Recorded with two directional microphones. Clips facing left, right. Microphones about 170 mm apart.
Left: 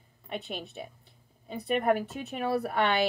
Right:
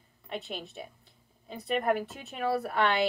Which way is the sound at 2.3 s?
Centre (ahead or behind).